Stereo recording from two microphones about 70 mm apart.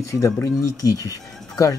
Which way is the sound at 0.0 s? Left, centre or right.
Left.